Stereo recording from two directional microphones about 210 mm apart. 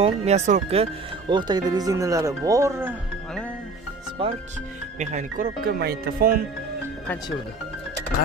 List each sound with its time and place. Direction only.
0.0 s speech: 30° right (ahead or behind)
1.3 s speech: 20° right (ahead or behind)
4.9 s speech: 35° right (ahead or behind)